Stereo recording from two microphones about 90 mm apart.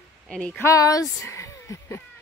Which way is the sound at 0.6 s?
40° left (ahead or behind).